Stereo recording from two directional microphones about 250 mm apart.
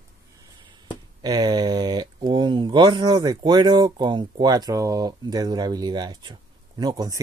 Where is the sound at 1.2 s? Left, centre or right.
Centre.